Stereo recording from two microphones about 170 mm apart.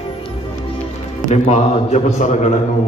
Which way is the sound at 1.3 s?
40° left (ahead or behind).